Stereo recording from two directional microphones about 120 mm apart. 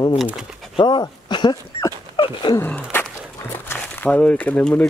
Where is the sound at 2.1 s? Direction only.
40° left (ahead or behind).